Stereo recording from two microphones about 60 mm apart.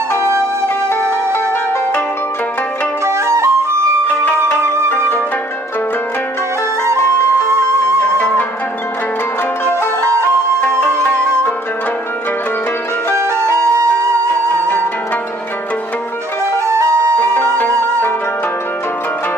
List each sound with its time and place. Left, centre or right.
3.1 s music: right
8.0 s music: centre
11.0 s music: centre
13.1 s music: right
17.2 s music: left